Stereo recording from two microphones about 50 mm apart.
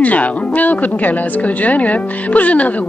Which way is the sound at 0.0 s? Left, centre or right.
Left.